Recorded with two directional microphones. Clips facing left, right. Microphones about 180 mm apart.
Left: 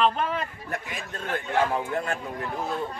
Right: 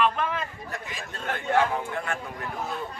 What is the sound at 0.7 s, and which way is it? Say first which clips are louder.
Speech: left 3 dB; 55° left (ahead or behind).